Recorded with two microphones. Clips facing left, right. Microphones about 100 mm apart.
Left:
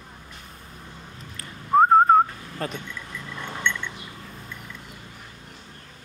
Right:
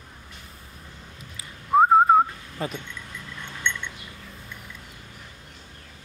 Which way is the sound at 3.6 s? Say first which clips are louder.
Left 2 dB; 20° right (ahead or behind).